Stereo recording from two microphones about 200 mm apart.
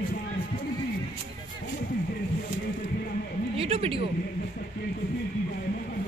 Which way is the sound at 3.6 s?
30° right (ahead or behind).